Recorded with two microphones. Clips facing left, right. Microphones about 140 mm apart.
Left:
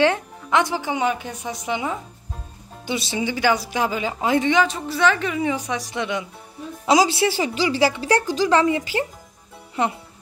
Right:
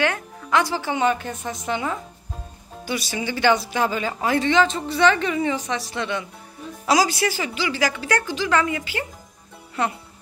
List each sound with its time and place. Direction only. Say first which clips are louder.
0.0 s a woman's voice: left 5 dB; 25° left (ahead or behind)
2.9 s speech: left 2 dB; 25° left (ahead or behind)
3.3 s a woman's voice: right 2 dB; 10° left (ahead or behind); by 9.0 s 30° left (ahead or behind)